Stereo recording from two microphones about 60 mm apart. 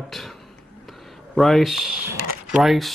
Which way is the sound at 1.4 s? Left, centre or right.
Centre.